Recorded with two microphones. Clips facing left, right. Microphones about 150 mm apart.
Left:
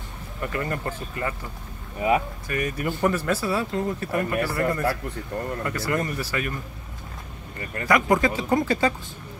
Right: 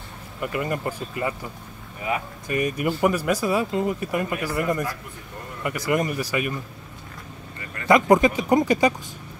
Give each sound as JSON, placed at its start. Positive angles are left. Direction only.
{"t": 0.4, "sound": "speech", "side_deg": -15}
{"t": 2.4, "sound": "speech", "side_deg": -20}
{"t": 7.9, "sound": "speech", "side_deg": -20}